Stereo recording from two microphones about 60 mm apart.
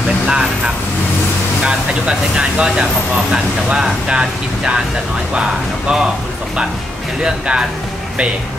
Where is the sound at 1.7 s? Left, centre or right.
Centre.